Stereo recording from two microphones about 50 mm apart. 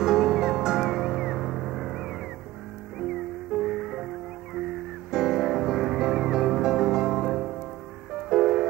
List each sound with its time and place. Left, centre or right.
0.0 s music: centre